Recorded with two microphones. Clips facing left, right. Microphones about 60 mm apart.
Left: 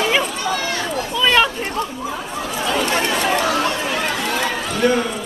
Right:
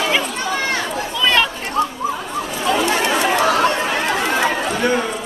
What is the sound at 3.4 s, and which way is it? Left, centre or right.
Chatter, right.